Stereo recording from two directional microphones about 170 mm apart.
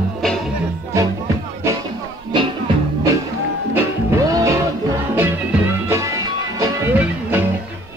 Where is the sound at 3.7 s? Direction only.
15° right (ahead or behind).